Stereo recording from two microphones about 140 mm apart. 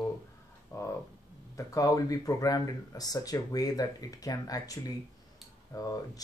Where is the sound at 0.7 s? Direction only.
20° left (ahead or behind).